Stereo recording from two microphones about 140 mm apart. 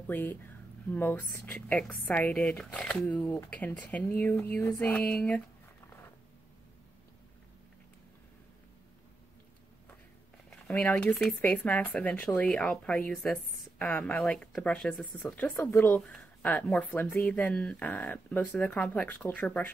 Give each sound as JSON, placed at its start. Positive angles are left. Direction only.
{"t": 0.0, "sound": "speech", "side_deg": 15}
{"t": 10.5, "sound": "speech", "side_deg": 10}